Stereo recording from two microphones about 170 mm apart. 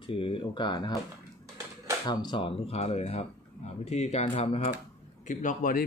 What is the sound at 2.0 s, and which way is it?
Speech, 25° left (ahead or behind).